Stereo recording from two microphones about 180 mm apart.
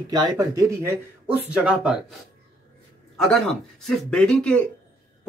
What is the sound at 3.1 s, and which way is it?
Speech, centre (ahead or behind).